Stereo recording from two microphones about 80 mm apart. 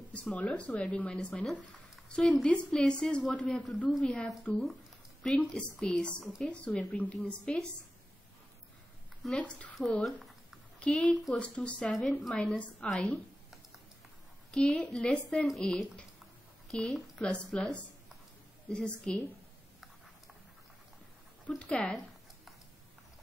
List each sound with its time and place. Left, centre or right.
0.1 s a woman's voice: centre
6.5 s speech: centre
9.4 s speech: centre
10.0 s a sound: centre
10.8 s a woman's voice: centre
14.5 s a woman's voice: centre
21.5 s speech: centre